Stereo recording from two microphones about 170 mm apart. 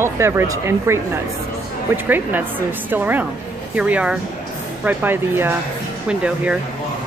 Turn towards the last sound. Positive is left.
turn(degrees=-5)  # may be behind; listen again after turning